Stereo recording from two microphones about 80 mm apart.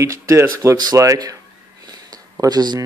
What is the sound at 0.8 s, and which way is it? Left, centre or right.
Speech, right.